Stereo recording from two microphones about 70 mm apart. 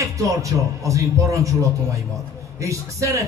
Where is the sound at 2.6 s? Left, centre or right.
Right.